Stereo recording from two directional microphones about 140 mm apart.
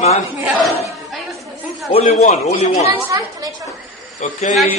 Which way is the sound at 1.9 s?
50° left (ahead or behind).